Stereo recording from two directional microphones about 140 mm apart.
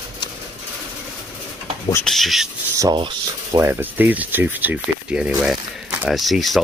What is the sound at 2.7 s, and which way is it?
Speech, 30° right (ahead or behind).